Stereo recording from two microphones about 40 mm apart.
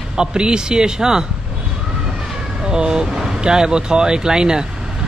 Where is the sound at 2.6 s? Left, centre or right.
Centre.